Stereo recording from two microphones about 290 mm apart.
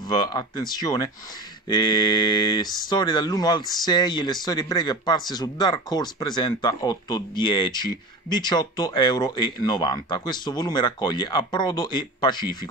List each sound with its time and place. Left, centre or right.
0.1 s speech: centre